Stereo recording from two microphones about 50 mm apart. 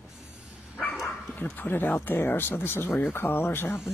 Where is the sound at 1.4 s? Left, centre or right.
Left.